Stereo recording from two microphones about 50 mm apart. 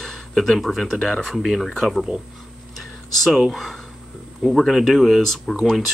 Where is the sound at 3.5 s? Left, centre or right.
Centre.